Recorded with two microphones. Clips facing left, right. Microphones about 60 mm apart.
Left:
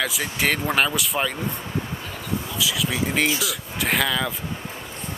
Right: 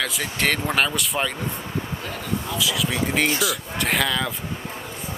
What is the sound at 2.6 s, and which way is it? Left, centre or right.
Speech, centre.